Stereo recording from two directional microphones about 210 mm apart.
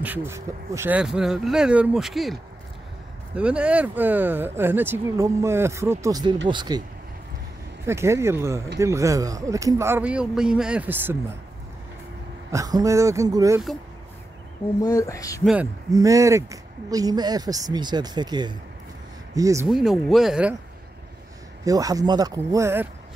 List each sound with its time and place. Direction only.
0.0 s speech: 10° right (ahead or behind)
3.3 s speech: 5° right (ahead or behind); by 6.8 s 20° right (ahead or behind)
7.8 s speech: 10° right (ahead or behind)
12.4 s speech: 15° right (ahead or behind)
14.8 s speech: 15° left (ahead or behind)
15.4 s speech: 5° right (ahead or behind)
19.7 s speech: centre (ahead or behind)
21.6 s speech: 15° right (ahead or behind)